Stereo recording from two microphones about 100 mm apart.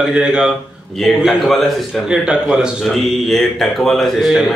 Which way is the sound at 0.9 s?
Centre (ahead or behind).